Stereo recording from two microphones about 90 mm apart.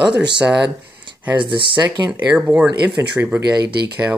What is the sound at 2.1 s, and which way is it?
Speech, 20° right (ahead or behind).